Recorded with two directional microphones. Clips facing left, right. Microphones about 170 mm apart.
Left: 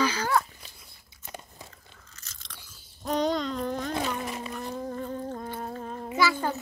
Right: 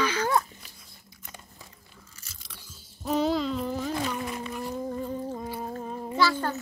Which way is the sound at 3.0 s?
5° right (ahead or behind).